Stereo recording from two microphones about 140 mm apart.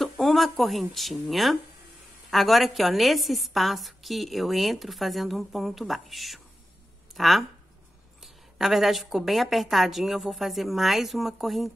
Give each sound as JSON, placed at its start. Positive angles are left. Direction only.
{"t": 0.0, "sound": "a woman's voice", "side_deg": 0}